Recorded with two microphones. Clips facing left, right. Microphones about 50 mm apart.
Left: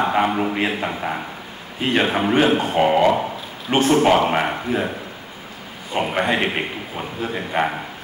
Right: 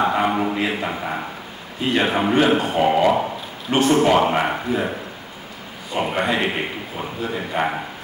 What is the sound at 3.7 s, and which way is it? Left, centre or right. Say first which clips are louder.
Speech: even; left.